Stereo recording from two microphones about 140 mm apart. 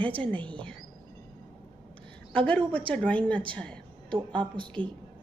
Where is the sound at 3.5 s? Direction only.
10° left (ahead or behind).